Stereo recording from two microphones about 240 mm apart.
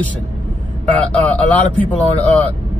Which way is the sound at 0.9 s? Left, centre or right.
Centre.